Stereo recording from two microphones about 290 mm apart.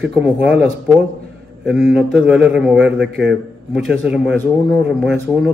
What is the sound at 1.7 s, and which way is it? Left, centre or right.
A man's voice, centre.